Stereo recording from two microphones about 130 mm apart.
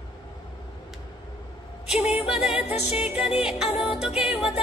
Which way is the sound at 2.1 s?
5° right (ahead or behind).